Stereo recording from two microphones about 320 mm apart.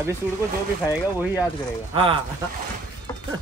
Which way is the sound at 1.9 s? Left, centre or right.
Centre.